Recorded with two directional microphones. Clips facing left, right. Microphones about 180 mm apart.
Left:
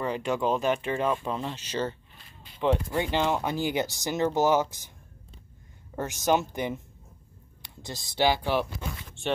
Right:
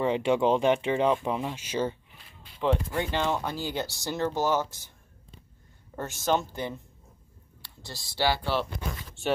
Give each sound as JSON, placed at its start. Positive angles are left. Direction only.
{"t": 0.0, "sound": "speech", "side_deg": -20}
{"t": 2.6, "sound": "speech", "side_deg": 5}
{"t": 5.9, "sound": "speech", "side_deg": 15}